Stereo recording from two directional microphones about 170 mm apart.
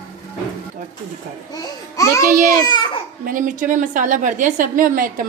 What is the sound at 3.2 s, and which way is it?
A woman's voice, 50° right (ahead or behind).